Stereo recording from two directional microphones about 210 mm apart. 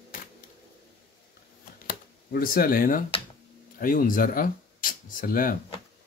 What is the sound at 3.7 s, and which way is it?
Speech, 45° left (ahead or behind).